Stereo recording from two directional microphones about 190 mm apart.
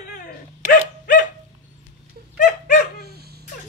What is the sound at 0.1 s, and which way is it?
Dog, 45° left (ahead or behind).